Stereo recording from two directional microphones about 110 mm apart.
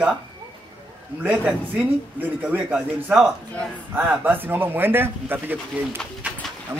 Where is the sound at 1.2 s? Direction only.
10° right (ahead or behind).